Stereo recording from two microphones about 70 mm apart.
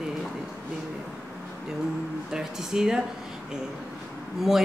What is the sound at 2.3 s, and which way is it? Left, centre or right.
Speech, centre.